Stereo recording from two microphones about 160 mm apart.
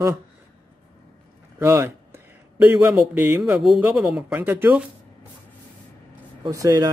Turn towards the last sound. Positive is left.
turn(degrees=-20)  # may be behind; listen again after turning